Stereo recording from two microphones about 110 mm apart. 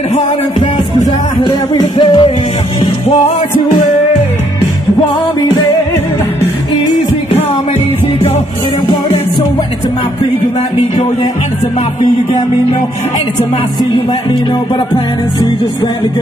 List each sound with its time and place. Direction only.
1.4 s music: 40° left (ahead or behind)
8.8 s music: 40° left (ahead or behind)